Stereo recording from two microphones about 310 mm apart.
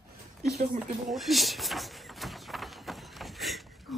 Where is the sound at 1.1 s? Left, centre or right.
Centre.